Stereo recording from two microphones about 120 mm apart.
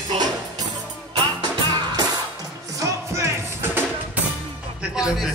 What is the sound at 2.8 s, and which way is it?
Music, 25° right (ahead or behind).